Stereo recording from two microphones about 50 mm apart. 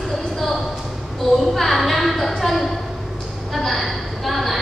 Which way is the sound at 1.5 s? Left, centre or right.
Centre.